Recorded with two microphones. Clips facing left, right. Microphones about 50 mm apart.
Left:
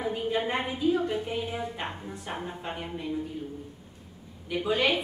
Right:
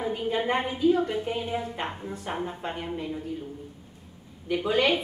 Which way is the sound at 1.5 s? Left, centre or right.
Centre.